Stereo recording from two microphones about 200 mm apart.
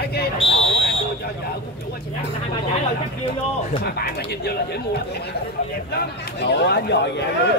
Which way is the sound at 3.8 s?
50° left (ahead or behind).